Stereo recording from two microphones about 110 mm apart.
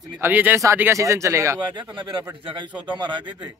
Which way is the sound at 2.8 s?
45° right (ahead or behind).